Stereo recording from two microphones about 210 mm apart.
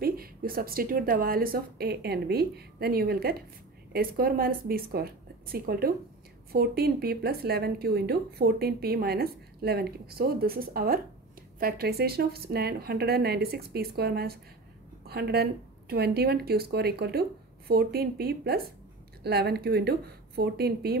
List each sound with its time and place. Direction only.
0.0 s speech: 45° right (ahead or behind)